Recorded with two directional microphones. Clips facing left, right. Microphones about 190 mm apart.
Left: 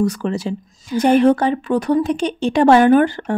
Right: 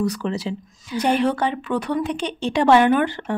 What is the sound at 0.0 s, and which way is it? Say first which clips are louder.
Speech: left 4 dB; 50° left (ahead or behind).